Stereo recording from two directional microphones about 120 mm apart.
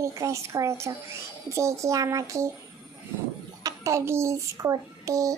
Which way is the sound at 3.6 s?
25° right (ahead or behind).